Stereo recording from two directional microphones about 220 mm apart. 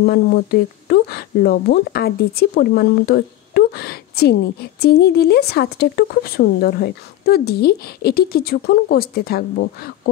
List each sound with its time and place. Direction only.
0.0 s speech: 45° left (ahead or behind)